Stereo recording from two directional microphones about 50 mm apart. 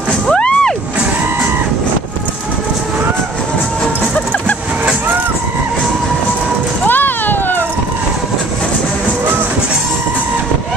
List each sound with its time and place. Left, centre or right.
0.4 s music: centre
6.9 s music: left